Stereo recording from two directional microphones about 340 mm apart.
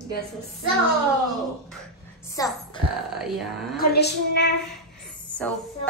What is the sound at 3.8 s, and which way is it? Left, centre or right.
Speech, left.